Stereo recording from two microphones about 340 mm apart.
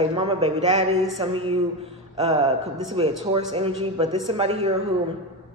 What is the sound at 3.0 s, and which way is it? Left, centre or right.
Speech, centre.